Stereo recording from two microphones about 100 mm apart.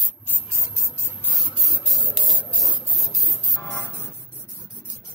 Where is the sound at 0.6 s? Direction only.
25° left (ahead or behind).